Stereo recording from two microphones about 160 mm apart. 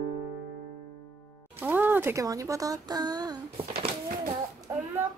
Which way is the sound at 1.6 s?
10° right (ahead or behind).